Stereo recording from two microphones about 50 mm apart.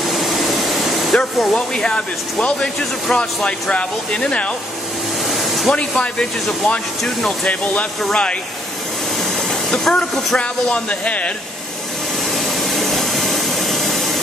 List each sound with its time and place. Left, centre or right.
0.1 s air conditioning: centre
1.8 s speech: left
5.3 s a sound: centre
5.8 s speech: centre
7.2 s speech: left
9.5 s speech: centre
10.3 s speech: left
12.3 s hair dryer: centre